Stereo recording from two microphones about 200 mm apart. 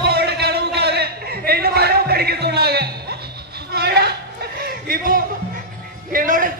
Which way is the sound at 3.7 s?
50° right (ahead or behind).